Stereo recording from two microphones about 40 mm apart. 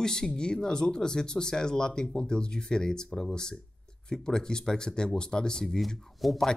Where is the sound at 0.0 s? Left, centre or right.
Centre.